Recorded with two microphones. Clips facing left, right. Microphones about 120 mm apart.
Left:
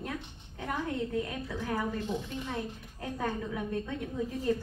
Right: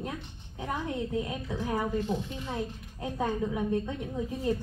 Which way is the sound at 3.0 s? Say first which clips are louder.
Right 4 dB; 20° right (ahead or behind).